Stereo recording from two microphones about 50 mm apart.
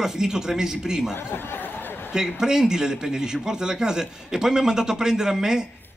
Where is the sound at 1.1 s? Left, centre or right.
Left.